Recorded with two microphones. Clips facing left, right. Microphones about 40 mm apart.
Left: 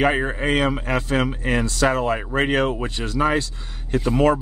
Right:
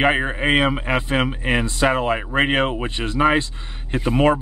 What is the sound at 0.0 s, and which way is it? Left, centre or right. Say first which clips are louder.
Speech: right 1 dB; right.